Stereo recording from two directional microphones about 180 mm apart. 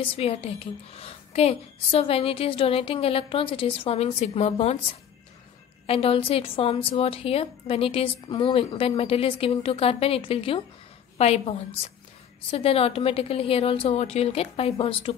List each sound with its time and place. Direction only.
0.0 s a woman's voice: 30° left (ahead or behind)
5.9 s a woman's voice: 30° left (ahead or behind)